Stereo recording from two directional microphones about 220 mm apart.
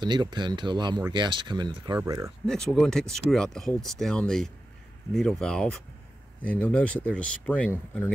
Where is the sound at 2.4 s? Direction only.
Centre (ahead or behind).